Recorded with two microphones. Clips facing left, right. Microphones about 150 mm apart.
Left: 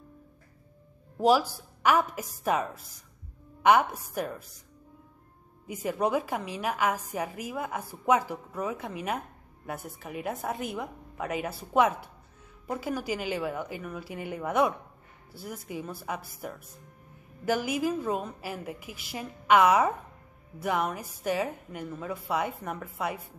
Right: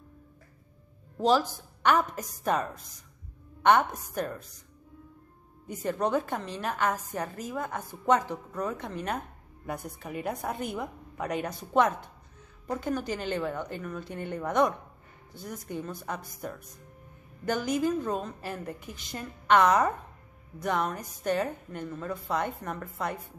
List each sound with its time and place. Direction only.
1.1 s a woman's voice: 10° left (ahead or behind)
5.7 s a woman's voice: 10° left (ahead or behind)